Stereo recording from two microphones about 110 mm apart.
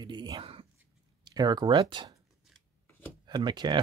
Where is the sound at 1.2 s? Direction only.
40° right (ahead or behind).